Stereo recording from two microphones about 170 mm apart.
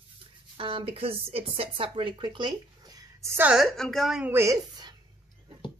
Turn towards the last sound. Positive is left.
turn(degrees=-20)  # may be behind; listen again after turning